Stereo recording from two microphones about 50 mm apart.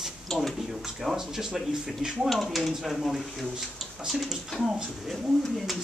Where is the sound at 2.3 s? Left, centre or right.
Centre.